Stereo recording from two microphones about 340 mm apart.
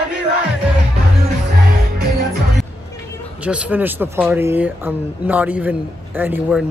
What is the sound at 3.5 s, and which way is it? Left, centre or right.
Speech, centre.